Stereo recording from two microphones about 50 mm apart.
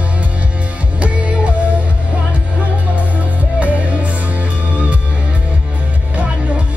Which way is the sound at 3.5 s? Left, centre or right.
Right.